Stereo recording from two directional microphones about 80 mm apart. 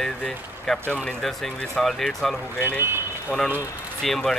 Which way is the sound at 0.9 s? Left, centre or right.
Centre.